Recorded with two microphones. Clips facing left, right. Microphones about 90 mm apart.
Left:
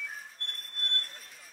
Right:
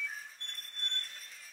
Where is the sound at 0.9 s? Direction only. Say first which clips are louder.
Left 6 dB; 40° left (ahead or behind).